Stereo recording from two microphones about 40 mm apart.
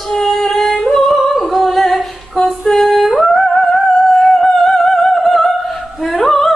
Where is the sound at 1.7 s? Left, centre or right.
Centre.